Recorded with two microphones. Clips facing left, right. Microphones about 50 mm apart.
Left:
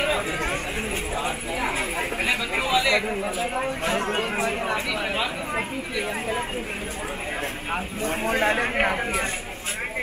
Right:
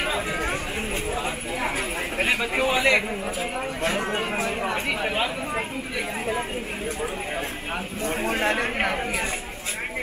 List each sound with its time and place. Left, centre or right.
2.6 s a sound: right
3.5 s a man's voice: centre
4.4 s speech: centre
5.0 s speech: right
8.0 s a man's voice: centre